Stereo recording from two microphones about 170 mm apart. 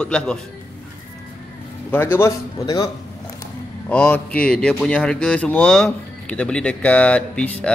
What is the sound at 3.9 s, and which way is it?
Speech, 10° left (ahead or behind).